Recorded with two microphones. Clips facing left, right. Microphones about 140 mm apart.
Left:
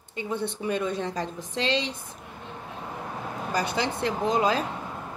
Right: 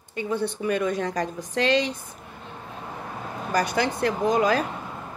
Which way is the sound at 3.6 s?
25° left (ahead or behind).